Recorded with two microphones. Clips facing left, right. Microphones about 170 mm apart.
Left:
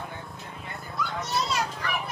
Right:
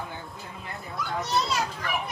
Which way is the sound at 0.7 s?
Centre (ahead or behind).